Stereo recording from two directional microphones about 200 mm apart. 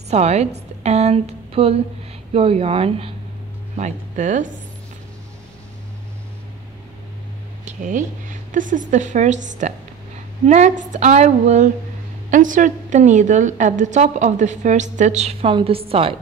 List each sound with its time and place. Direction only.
0.1 s a woman's voice: 35° right (ahead or behind)
7.6 s a sound: 40° right (ahead or behind)
8.5 s a woman's voice: 40° right (ahead or behind)